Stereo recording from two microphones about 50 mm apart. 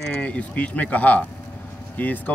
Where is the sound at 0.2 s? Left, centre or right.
Left.